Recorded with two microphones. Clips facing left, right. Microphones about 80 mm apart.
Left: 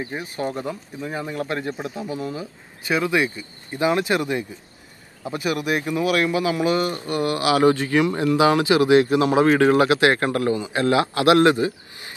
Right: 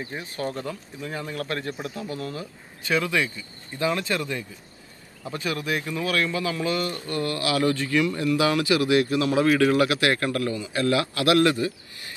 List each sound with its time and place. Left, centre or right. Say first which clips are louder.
0.0 s speech: left 4 dB; left